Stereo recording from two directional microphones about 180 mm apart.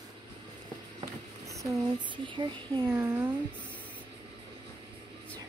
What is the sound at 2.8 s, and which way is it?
Speech, 15° right (ahead or behind).